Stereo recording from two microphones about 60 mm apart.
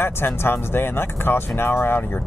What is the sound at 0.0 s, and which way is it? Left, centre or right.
Speech, left.